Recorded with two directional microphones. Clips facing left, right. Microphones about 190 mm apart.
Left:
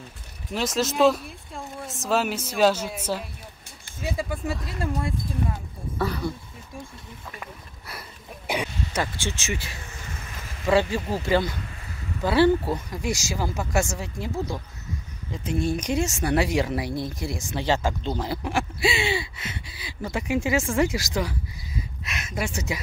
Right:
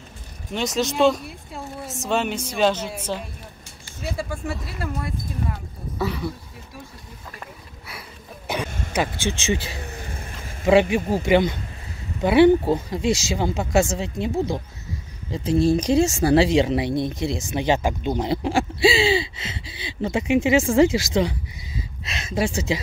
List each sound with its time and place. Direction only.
0.5 s speech: centre (ahead or behind)
4.0 s speech: 15° left (ahead or behind)
5.9 s speech: 5° right (ahead or behind)
7.3 s a sound: centre (ahead or behind)
8.6 s a sound: 50° right (ahead or behind)
8.9 s speech: 20° right (ahead or behind)
9.5 s vehicle: 25° right (ahead or behind)
10.7 s speech: 20° right (ahead or behind)